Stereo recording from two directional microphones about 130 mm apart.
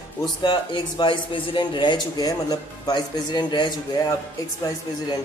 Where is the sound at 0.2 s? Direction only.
35° left (ahead or behind).